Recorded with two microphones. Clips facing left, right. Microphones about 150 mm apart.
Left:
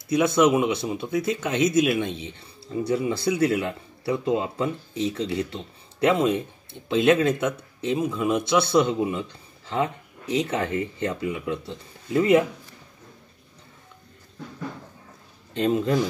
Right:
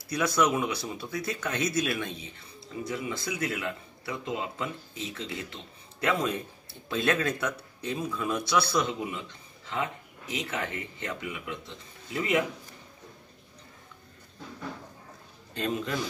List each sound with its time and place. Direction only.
0.1 s speech: 25° left (ahead or behind)
15.5 s speech: 25° left (ahead or behind)